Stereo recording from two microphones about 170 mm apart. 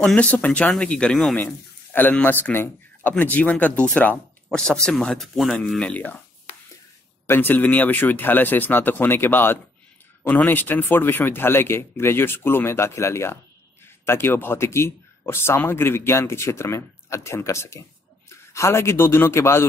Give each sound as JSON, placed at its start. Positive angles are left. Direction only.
{"t": 0.0, "sound": "speech", "side_deg": 5}
{"t": 7.2, "sound": "speech", "side_deg": 10}